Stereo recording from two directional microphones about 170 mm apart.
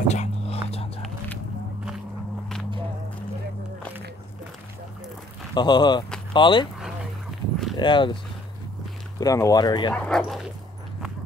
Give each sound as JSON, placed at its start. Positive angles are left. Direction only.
{"t": 0.1, "sound": "music", "side_deg": 40}
{"t": 5.5, "sound": "speech", "side_deg": 25}
{"t": 6.8, "sound": "dog", "side_deg": 0}
{"t": 7.7, "sound": "speech", "side_deg": 30}
{"t": 9.2, "sound": "speech", "side_deg": 20}
{"t": 9.9, "sound": "speech", "side_deg": 5}